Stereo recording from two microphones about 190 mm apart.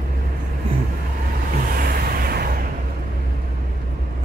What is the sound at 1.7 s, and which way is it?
Vehicle, 50° right (ahead or behind).